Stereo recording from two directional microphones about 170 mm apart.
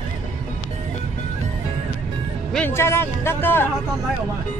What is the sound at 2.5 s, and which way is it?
A man's voice, 10° left (ahead or behind).